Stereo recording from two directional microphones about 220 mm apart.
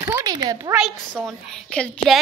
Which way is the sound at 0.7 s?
Centre (ahead or behind).